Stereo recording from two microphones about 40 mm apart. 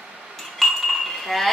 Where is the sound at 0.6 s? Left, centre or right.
Centre.